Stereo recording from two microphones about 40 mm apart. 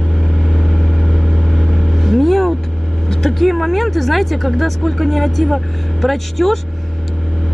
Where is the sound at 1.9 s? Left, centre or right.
Centre.